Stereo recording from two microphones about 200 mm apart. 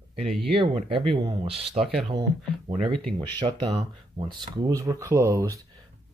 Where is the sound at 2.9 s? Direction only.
5° left (ahead or behind).